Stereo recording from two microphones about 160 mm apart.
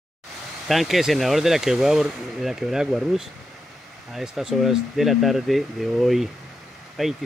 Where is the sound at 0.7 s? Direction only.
Centre (ahead or behind).